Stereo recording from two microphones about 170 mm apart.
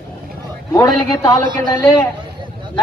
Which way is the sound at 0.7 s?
20° left (ahead or behind).